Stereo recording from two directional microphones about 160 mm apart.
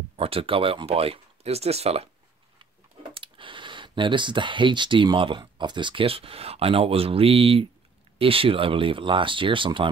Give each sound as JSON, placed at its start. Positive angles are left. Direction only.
{"t": 0.1, "sound": "speech", "side_deg": -35}
{"t": 3.2, "sound": "speech", "side_deg": -30}